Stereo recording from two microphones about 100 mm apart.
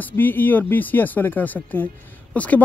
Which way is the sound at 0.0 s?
20° left (ahead or behind).